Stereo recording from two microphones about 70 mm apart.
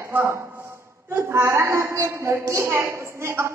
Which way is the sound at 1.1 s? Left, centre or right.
Right.